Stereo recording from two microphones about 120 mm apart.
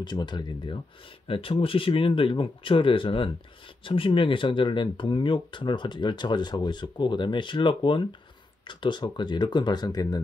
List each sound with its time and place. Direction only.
0.0 s speech: 40° left (ahead or behind)